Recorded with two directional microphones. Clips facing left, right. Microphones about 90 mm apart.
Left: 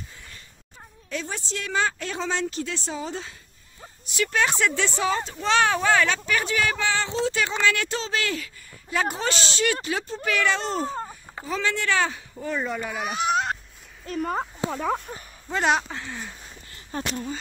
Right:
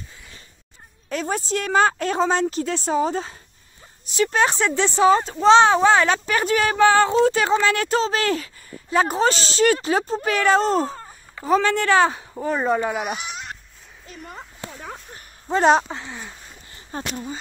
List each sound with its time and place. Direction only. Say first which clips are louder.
1.0 s a woman's voice: right 7 dB; 50° right (ahead or behind)
13.2 s a sound: left 10 dB; 40° left (ahead or behind)
14.0 s speech: left 11 dB; 45° left (ahead or behind)
15.4 s speech: right 6 dB; 35° right (ahead or behind)
15.9 s speech: right 2 dB; 20° right (ahead or behind)
16.9 s speech: even; 30° right (ahead or behind)